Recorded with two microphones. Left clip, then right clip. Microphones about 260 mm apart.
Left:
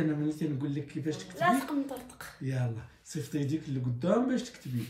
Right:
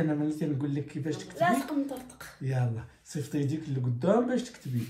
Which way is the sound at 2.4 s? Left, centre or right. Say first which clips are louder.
Right 3 dB; centre.